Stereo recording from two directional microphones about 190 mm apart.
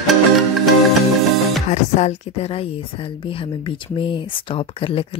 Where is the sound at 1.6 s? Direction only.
35° left (ahead or behind).